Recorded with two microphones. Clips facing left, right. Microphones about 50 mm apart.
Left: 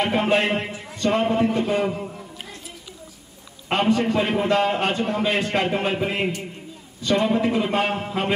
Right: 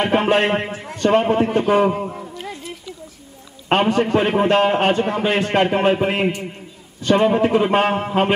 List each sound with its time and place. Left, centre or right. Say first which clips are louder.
0.1 s a man's voice: right 4 dB; right
3.7 s a man's voice: right 4 dB; right